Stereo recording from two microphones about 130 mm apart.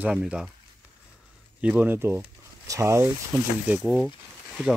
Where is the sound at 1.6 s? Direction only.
10° right (ahead or behind).